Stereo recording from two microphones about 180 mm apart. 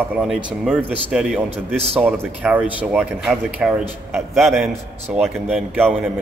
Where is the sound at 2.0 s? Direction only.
10° right (ahead or behind).